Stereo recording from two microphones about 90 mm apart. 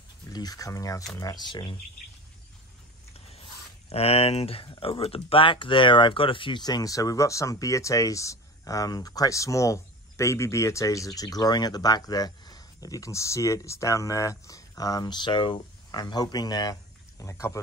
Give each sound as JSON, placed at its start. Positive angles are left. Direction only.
{"t": 0.3, "sound": "speech", "side_deg": 45}
{"t": 3.4, "sound": "speech", "side_deg": 90}
{"t": 6.6, "sound": "speech", "side_deg": 45}
{"t": 17.2, "sound": "speech", "side_deg": 35}